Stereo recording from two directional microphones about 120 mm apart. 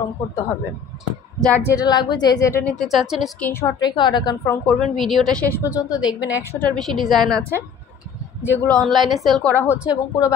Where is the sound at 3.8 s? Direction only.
40° left (ahead or behind).